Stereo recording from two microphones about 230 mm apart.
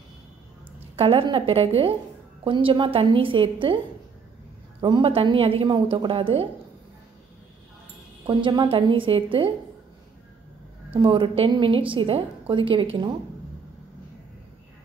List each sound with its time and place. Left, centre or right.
0.9 s a woman's voice: right
4.8 s a woman's voice: right
8.3 s a woman's voice: centre
11.0 s a woman's voice: right